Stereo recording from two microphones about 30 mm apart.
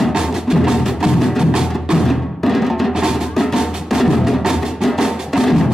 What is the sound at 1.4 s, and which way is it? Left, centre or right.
Music, right.